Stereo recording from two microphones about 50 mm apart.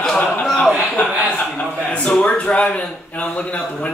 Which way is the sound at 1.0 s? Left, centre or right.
Left.